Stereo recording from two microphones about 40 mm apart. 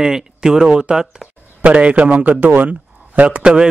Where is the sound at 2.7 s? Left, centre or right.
Right.